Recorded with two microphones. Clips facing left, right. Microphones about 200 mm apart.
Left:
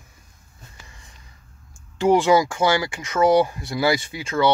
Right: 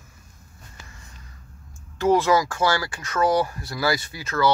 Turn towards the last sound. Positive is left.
turn(degrees=25)  # may be behind; listen again after turning